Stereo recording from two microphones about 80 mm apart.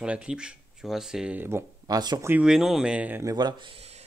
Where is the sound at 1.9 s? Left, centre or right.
Right.